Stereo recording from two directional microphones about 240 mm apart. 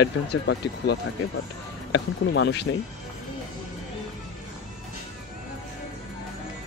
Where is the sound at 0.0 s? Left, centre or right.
Left.